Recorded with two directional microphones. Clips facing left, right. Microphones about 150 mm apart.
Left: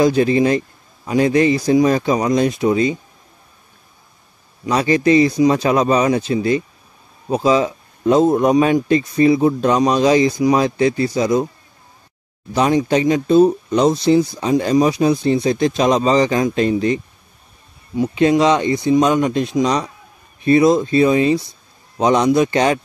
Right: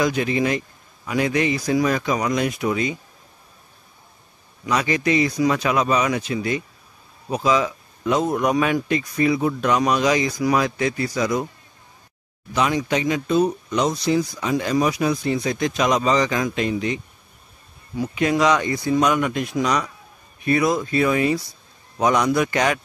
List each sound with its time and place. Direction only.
0.0 s speech: 30° left (ahead or behind)
4.6 s a man's voice: 35° left (ahead or behind)
12.5 s speech: 35° left (ahead or behind)
17.9 s a man's voice: 25° left (ahead or behind)